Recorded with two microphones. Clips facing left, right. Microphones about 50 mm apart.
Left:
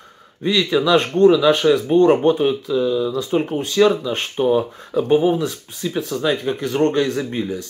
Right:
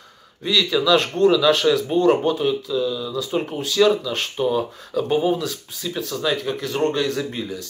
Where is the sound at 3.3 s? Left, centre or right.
Centre.